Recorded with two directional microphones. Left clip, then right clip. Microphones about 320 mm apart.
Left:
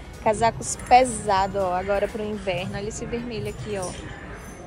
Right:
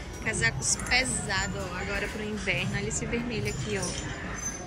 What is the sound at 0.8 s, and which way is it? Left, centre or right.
A woman's voice, centre.